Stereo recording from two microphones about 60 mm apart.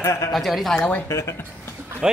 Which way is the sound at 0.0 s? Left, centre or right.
Left.